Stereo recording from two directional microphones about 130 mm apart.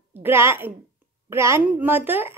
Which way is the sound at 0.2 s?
20° right (ahead or behind).